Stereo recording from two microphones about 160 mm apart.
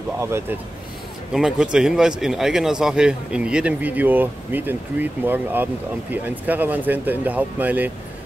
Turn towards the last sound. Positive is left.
turn(degrees=-10)  # may be behind; listen again after turning